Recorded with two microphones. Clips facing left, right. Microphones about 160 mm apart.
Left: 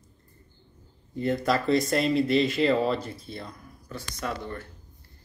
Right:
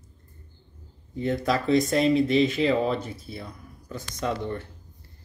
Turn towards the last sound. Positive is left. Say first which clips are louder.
# right 4 dB
turn(degrees=-20)  # may be behind; listen again after turning